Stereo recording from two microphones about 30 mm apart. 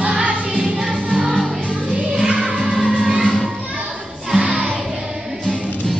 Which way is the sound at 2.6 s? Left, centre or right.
Centre.